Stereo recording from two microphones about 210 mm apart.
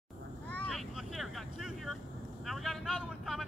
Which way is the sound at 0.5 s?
Centre (ahead or behind).